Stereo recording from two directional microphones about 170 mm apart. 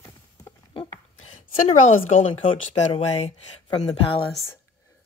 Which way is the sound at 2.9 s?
40° left (ahead or behind).